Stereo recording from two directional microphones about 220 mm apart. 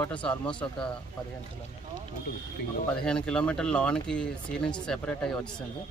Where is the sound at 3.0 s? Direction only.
5° left (ahead or behind).